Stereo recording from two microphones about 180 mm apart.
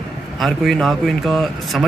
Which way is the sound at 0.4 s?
Centre (ahead or behind).